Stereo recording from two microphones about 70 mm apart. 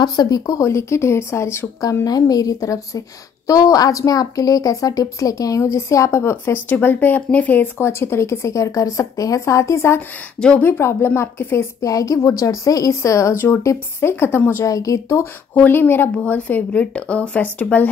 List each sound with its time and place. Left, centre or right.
0.0 s a woman's voice: left
0.7 s speech: left
2.0 s a woman's voice: left
7.8 s a woman's voice: left
11.9 s a woman's voice: left
14.7 s a woman's voice: left
15.5 s a woman's voice: left